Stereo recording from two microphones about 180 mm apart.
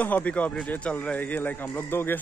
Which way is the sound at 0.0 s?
10° left (ahead or behind).